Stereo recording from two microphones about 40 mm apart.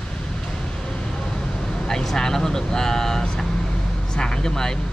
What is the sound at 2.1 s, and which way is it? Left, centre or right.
Speech, centre.